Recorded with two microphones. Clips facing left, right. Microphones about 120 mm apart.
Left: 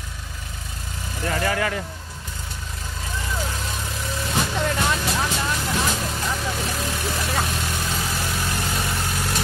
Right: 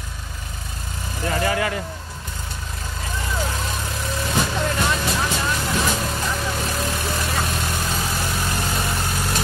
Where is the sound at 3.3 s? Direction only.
70° right (ahead or behind).